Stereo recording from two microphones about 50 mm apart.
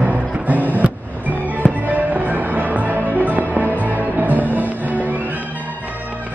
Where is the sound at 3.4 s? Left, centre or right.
Left.